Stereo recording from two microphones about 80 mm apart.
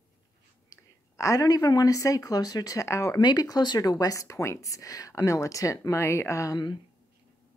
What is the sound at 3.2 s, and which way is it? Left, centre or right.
Speech, left.